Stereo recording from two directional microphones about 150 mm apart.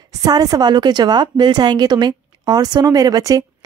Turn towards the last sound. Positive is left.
turn(degrees=-25)  # may be behind; listen again after turning